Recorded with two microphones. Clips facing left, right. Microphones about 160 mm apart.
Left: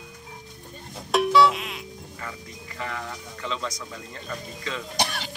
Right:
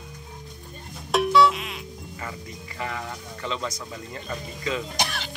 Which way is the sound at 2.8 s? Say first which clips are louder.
Right 1 dB; 5° right (ahead or behind).